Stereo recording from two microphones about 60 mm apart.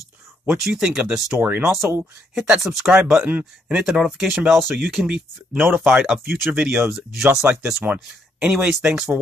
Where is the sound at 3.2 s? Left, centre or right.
Right.